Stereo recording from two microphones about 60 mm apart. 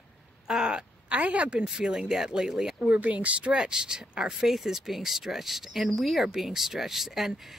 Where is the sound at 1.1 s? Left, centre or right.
Right.